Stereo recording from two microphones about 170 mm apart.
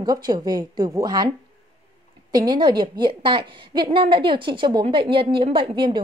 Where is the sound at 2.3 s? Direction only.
25° right (ahead or behind).